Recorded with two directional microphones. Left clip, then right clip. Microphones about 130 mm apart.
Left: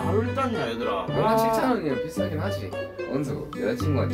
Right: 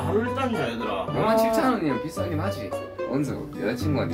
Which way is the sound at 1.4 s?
20° left (ahead or behind).